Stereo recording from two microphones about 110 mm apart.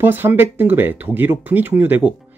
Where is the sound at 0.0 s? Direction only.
20° right (ahead or behind).